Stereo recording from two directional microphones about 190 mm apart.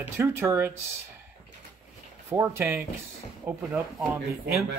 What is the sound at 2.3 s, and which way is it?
A man's voice, 10° right (ahead or behind).